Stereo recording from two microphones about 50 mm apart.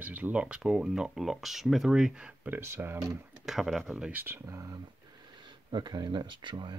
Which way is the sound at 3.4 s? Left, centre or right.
Centre.